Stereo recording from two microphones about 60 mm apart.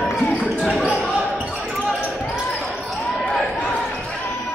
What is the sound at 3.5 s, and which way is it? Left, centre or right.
Basketball bounce, left.